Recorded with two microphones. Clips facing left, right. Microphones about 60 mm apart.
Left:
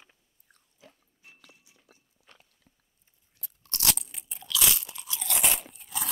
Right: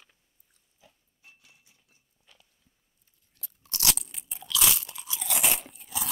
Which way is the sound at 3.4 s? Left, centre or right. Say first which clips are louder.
Right 1 dB; centre.